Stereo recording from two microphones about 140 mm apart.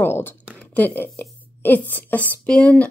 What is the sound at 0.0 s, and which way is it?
A woman's voice, 15° left (ahead or behind).